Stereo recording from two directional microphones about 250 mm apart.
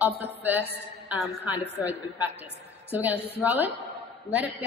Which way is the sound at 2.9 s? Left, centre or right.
Centre.